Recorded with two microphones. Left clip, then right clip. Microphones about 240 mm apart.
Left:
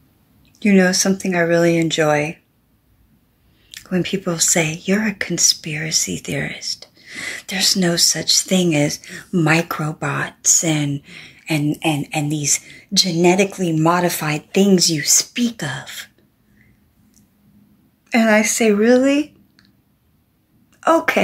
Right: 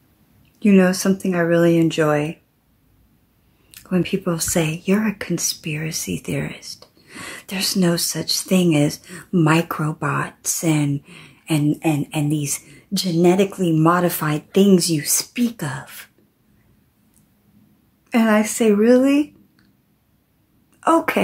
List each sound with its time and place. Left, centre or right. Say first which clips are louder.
0.6 s speech: left 1 dB; centre
3.9 s speech: even; centre
18.1 s speech: left 3 dB; centre
20.8 s a woman's voice: left 2 dB; centre